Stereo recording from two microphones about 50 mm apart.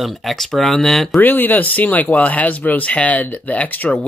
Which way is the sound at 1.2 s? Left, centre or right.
Left.